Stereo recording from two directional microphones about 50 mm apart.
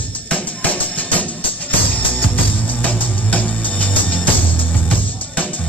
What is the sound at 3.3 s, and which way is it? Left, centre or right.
Music, left.